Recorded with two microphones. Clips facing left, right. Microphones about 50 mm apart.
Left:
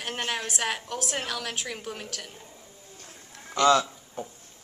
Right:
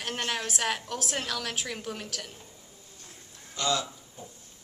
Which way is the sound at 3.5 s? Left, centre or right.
Left.